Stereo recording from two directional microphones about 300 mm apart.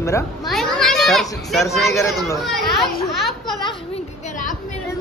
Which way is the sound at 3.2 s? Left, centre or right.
Centre.